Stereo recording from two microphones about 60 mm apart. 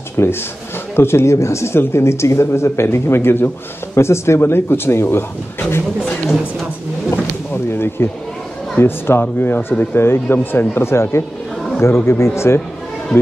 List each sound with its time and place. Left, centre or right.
0.2 s speech: left
7.1 s a sound: left
8.7 s speech: left